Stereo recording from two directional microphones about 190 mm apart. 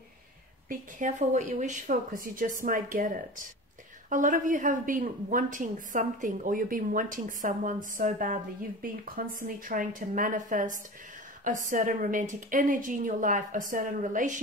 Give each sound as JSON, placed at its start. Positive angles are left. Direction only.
{"t": 0.7, "sound": "speech", "side_deg": -40}